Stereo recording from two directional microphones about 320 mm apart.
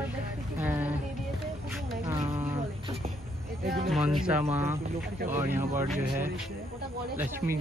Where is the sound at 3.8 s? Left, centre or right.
Centre.